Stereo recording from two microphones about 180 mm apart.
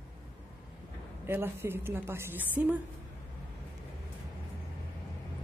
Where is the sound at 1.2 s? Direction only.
10° right (ahead or behind).